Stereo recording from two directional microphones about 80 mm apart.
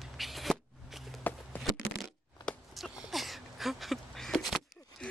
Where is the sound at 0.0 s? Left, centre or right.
Centre.